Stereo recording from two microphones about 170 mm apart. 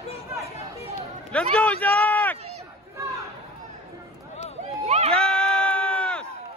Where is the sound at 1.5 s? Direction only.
10° left (ahead or behind).